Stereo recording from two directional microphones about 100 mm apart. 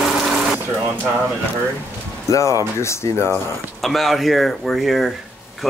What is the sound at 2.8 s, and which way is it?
Speech, 30° left (ahead or behind).